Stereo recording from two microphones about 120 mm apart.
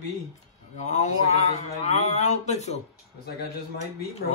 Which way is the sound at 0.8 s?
80° left.